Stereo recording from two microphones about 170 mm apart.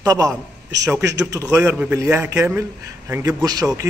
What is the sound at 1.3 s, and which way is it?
A man's voice, 15° right (ahead or behind).